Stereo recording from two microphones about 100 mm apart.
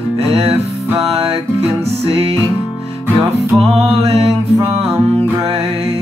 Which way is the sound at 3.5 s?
75° right (ahead or behind).